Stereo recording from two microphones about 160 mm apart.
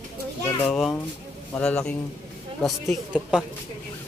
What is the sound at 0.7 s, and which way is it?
A woman's voice, 5° left (ahead or behind).